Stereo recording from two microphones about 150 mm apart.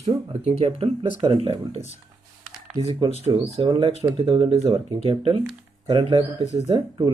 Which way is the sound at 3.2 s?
35° right (ahead or behind).